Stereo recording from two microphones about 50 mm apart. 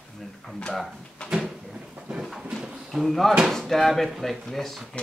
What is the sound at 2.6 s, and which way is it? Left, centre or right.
Speech, centre.